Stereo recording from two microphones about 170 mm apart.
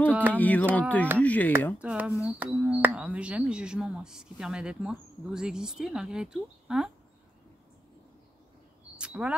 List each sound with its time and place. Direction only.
0.3 s speech: 10° left (ahead or behind)
1.8 s speech: 5° right (ahead or behind)
8.9 s a sound: 5° right (ahead or behind)